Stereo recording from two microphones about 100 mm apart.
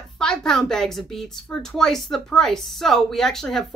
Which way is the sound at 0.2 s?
5° left (ahead or behind).